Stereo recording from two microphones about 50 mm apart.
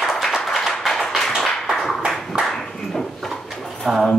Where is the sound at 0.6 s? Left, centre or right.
Centre.